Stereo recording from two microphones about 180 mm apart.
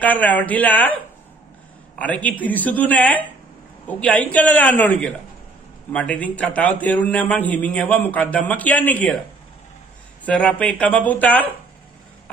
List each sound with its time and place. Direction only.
0.0 s a man's voice: 10° left (ahead or behind)
10.2 s a man's voice: 5° left (ahead or behind)